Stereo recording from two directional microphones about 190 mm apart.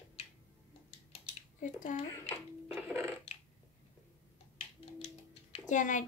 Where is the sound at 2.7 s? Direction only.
Centre (ahead or behind).